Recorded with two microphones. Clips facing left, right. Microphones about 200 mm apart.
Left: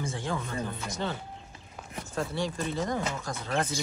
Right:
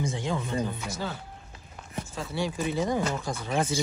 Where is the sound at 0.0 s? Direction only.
20° right (ahead or behind).